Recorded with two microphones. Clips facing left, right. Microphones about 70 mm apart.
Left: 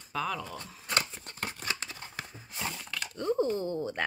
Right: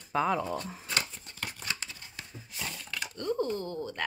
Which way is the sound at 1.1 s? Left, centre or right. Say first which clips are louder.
Left 2 dB; left.